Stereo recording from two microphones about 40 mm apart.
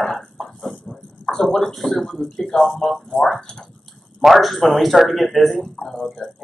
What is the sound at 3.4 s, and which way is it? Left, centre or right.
Speech, centre.